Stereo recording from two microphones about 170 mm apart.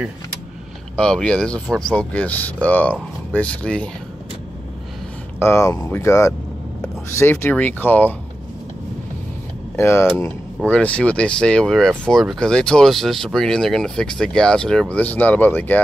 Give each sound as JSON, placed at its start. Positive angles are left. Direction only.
{"t": 0.9, "sound": "speech", "side_deg": 5}
{"t": 5.4, "sound": "speech", "side_deg": 15}
{"t": 9.8, "sound": "speech", "side_deg": 15}